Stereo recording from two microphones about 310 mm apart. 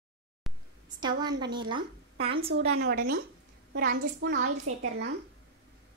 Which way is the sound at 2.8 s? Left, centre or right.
Right.